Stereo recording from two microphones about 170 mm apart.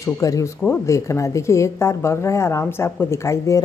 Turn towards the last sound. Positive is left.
turn(degrees=15)  # may be behind; listen again after turning